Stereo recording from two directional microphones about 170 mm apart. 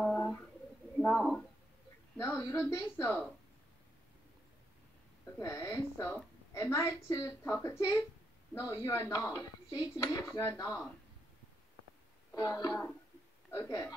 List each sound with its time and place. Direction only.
0.0 s bird: 5° left (ahead or behind)
0.9 s speech: 5° left (ahead or behind)
2.1 s speech: 15° left (ahead or behind)
5.4 s speech: 20° left (ahead or behind)
12.4 s speech: 25° left (ahead or behind)